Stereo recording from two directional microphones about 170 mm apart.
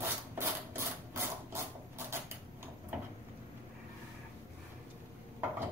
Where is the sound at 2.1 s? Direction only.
15° right (ahead or behind).